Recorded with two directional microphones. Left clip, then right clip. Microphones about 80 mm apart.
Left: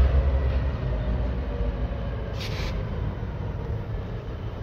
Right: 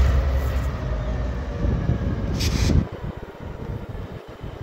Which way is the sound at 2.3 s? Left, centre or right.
Centre.